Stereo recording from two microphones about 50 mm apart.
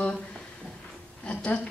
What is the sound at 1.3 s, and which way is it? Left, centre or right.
Speech, left.